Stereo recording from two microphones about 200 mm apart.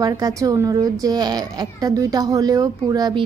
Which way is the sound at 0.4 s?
15° right (ahead or behind).